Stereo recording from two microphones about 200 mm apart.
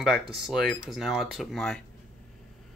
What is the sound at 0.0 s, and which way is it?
Speech, centre (ahead or behind).